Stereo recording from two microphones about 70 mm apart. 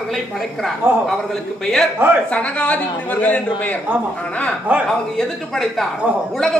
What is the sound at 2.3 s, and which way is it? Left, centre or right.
A woman's voice, centre.